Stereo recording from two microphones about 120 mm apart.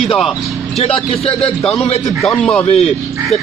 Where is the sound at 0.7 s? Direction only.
55° left (ahead or behind).